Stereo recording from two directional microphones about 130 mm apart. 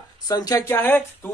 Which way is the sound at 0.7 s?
15° left (ahead or behind).